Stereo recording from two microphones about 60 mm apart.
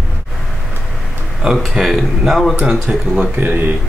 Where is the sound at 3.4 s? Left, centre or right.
Right.